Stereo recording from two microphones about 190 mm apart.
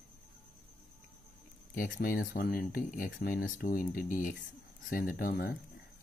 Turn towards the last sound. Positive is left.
turn(degrees=50)  # may be behind; listen again after turning